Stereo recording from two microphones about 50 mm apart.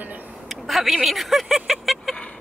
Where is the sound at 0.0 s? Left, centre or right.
Right.